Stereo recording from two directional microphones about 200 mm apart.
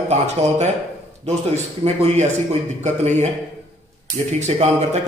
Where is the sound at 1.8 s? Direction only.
30° right (ahead or behind).